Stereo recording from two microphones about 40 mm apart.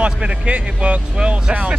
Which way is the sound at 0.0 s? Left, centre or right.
Right.